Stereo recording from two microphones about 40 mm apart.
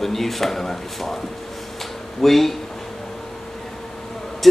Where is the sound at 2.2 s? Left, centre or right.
Centre.